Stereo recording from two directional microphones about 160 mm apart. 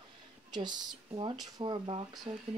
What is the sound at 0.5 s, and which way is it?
A child's voice, 25° right (ahead or behind).